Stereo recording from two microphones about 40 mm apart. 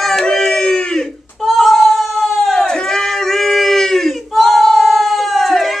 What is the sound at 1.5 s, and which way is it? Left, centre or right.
Cat, centre.